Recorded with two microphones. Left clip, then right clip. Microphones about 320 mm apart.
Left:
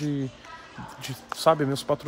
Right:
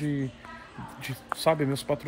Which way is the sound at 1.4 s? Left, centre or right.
Centre.